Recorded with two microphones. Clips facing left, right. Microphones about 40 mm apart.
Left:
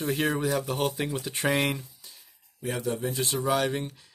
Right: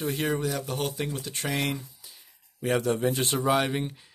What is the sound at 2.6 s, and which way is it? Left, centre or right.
Speech, right.